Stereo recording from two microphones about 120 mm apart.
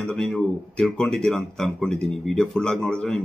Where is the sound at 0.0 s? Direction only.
5° left (ahead or behind).